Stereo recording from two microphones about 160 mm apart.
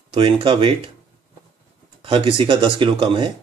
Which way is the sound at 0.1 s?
35° right (ahead or behind).